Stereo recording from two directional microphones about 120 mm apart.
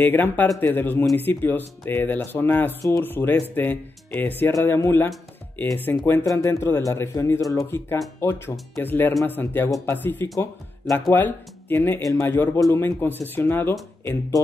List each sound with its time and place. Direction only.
0.0 s speech: 15° left (ahead or behind)